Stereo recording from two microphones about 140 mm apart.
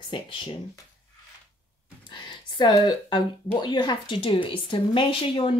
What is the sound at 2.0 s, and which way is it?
A woman's voice, 35° left (ahead or behind).